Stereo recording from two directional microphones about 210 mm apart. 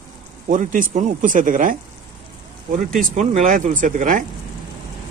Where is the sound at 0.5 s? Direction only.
40° right (ahead or behind).